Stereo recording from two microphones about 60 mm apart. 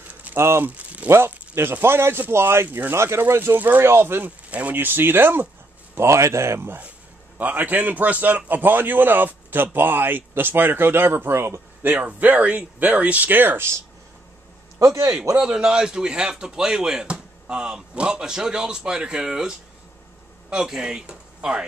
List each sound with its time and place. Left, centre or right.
0.1 s a sound: right
0.4 s speech: right
0.7 s speech: right
1.1 s a man's voice: right
4.5 s speech: right
4.7 s a man's voice: right
5.9 s speech: right
7.3 s a man's voice: right
11.8 s speech: right
14.8 s a man's voice: right
15.3 s speech: centre